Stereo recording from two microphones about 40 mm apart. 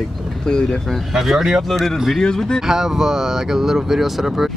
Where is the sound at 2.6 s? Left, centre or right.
Centre.